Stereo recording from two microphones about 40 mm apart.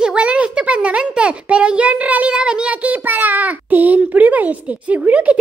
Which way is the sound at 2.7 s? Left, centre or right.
Right.